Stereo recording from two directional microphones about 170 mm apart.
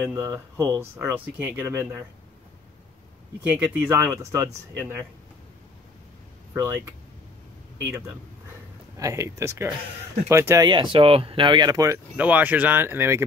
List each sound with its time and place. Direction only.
0.0 s speech: 15° right (ahead or behind)
3.5 s speech: 10° right (ahead or behind)
8.9 s speech: 20° right (ahead or behind)
12.2 s speech: 10° right (ahead or behind)